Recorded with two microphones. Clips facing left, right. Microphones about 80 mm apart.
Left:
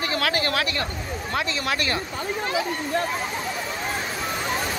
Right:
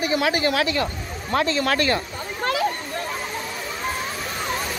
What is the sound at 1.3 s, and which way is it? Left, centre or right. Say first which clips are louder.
Speech: right 6 dB; right.